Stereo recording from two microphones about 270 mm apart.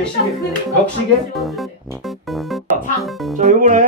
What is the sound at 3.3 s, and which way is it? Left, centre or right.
Music, right.